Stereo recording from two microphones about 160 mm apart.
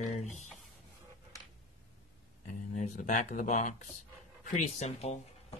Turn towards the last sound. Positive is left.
turn(degrees=45)  # may be behind; listen again after turning